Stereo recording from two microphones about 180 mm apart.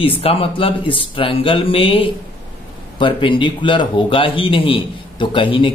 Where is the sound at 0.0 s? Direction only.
30° left (ahead or behind).